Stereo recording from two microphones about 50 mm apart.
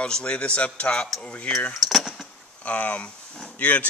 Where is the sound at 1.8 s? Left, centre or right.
Centre.